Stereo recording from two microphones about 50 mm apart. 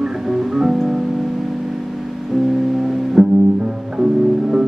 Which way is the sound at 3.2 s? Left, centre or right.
Centre.